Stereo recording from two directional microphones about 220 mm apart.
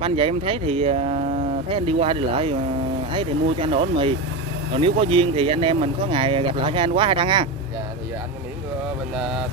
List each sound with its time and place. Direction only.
0.0 s speech: 25° right (ahead or behind)
9.1 s vehicle: 5° right (ahead or behind)